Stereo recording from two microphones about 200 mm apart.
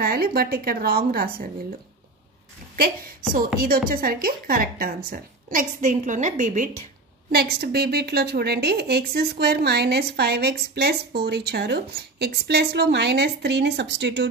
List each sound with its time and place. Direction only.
0.0 s a woman's voice: 50° right (ahead or behind)
3.5 s a woman's voice: 50° right (ahead or behind)
7.3 s a woman's voice: 50° right (ahead or behind)